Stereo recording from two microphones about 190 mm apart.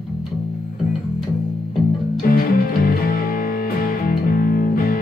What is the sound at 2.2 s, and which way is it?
Music, 50° left (ahead or behind).